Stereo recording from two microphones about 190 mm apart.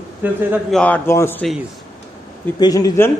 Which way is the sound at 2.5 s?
20° left (ahead or behind).